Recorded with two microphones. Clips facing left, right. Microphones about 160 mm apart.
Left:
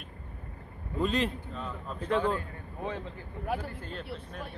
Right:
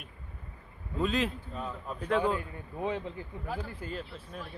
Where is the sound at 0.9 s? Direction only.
Centre (ahead or behind).